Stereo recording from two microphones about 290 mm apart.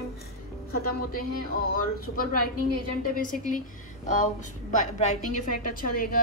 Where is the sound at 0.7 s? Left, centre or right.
Left.